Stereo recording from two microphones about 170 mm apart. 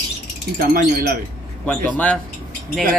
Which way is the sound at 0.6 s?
60° right (ahead or behind).